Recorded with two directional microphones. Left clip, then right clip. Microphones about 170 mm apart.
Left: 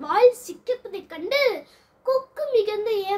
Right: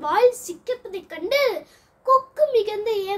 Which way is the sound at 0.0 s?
10° left (ahead or behind).